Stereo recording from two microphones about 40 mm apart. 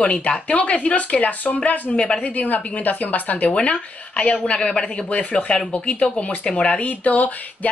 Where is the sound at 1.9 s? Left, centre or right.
Left.